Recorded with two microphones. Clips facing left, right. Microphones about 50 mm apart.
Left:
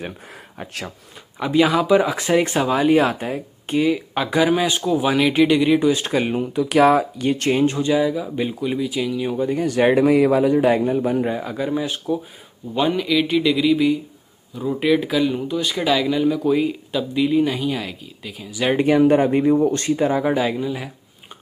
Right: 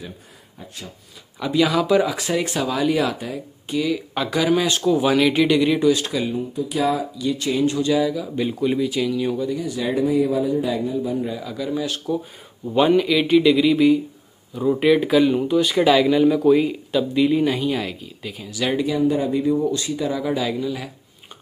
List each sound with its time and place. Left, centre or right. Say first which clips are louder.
0.6 s speech: left 6 dB; left
1.4 s speech: left 2 dB; left
3.9 s speech: left 2 dB; centre
5.9 s speech: even; left
6.2 s speech: left 3 dB; left
8.5 s speech: right 2 dB; centre
9.4 s speech: left 4 dB; left
9.7 s speech: left 10 dB; left
10.0 s speech: left 4 dB; left
12.6 s speech: right 4 dB; centre
18.9 s speech: left 8 dB; left; by 20.9 s centre